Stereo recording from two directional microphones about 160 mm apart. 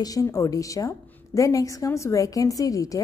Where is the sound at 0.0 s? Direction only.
20° left (ahead or behind).